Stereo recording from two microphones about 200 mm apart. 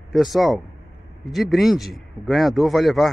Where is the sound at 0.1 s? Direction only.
Centre (ahead or behind).